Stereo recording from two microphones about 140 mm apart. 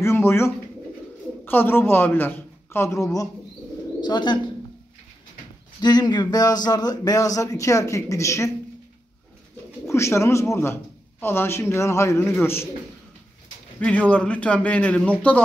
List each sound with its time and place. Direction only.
0.0 s a man's voice: 20° left (ahead or behind)
5.8 s a man's voice: 30° left (ahead or behind)
9.8 s a man's voice: 20° left (ahead or behind)
13.7 s a man's voice: 10° left (ahead or behind)